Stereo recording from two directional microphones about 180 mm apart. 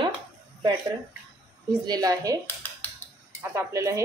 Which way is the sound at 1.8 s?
20° right (ahead or behind).